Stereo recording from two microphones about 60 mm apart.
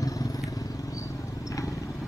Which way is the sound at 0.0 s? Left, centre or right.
Left.